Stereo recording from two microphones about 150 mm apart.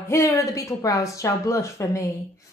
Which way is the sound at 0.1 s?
20° left (ahead or behind).